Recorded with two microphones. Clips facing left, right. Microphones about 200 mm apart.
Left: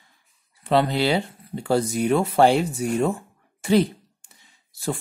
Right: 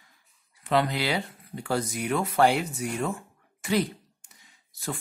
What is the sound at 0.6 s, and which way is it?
Speech, 30° left (ahead or behind).